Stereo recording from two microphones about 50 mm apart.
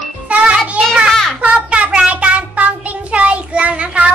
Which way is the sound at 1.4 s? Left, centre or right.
Right.